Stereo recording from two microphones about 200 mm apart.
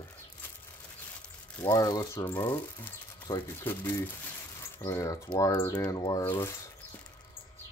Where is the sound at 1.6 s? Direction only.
15° left (ahead or behind).